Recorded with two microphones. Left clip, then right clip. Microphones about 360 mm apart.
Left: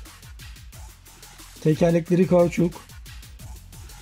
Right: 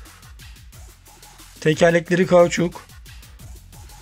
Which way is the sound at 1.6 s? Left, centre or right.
Right.